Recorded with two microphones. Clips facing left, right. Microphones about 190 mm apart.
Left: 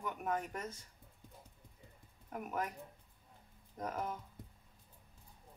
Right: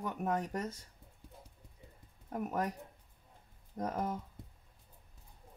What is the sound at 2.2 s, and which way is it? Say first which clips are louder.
Speech: right 4 dB; 35° right (ahead or behind).